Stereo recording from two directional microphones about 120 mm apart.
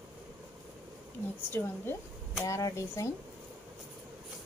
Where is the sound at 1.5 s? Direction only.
20° left (ahead or behind).